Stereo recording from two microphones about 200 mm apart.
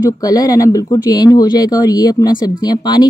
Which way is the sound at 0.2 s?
20° left (ahead or behind).